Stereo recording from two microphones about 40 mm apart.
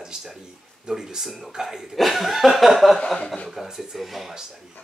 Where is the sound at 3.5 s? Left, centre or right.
Centre.